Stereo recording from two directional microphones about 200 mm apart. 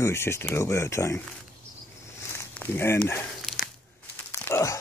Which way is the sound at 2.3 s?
10° left (ahead or behind).